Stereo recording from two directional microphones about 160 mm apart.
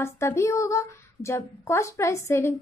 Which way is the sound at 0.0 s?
20° left (ahead or behind).